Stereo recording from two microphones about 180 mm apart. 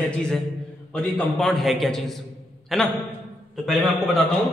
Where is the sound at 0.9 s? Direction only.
Centre (ahead or behind).